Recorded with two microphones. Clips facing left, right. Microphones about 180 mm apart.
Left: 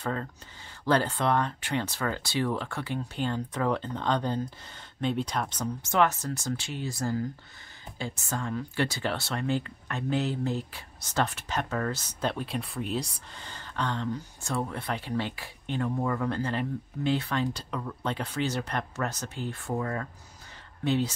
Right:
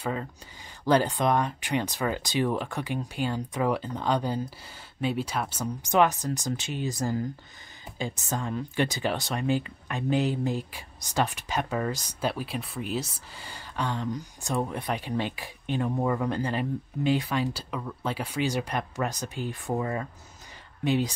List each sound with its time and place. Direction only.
0.0 s speech: 10° right (ahead or behind)